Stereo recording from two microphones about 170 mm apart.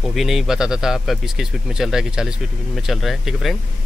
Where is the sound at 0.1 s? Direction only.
Centre (ahead or behind).